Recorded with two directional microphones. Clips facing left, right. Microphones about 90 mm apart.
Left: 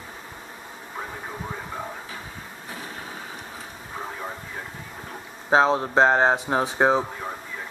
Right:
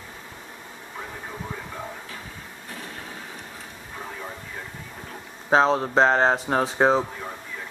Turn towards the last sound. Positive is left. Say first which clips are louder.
# even
turn(degrees=5)  # may be behind; listen again after turning